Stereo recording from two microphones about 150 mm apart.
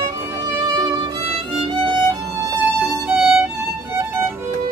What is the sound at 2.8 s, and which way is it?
Violin, 5° right (ahead or behind).